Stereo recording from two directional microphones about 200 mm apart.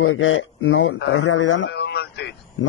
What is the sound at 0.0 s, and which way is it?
A man's voice, 90° left.